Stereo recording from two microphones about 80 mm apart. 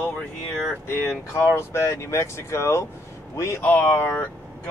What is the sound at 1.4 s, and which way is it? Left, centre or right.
Speech, left.